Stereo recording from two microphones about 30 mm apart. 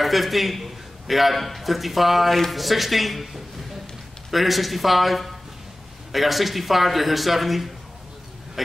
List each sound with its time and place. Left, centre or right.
0.0 s a man's voice: centre